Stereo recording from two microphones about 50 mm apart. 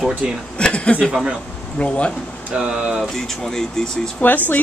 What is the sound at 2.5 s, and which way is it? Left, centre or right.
Speech, centre.